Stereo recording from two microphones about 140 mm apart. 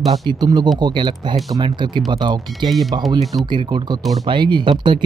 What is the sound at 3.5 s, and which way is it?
Speech, 35° right (ahead or behind).